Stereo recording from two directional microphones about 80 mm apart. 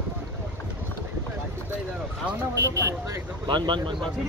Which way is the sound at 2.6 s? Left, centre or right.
Right.